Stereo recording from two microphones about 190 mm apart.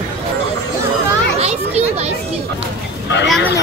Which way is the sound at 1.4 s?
35° right (ahead or behind).